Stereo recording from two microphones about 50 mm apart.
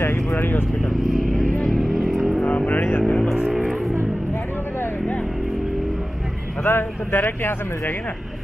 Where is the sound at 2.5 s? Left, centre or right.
Left.